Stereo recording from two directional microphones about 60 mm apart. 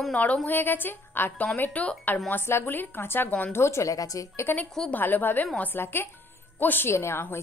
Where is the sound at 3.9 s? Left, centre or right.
Left.